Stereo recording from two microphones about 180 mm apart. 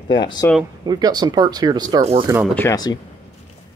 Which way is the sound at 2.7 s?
20° left (ahead or behind).